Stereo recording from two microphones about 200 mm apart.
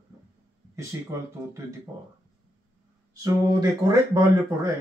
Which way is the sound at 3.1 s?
15° right (ahead or behind).